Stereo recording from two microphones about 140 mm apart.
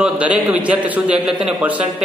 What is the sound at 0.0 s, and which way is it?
A man's voice, 10° right (ahead or behind).